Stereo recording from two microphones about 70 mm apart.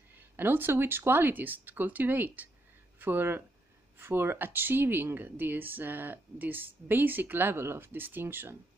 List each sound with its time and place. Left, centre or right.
0.4 s speech: right